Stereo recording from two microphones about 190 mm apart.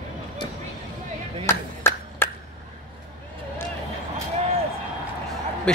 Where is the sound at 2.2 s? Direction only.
10° left (ahead or behind).